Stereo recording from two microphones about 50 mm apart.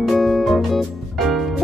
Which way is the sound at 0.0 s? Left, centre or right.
Centre.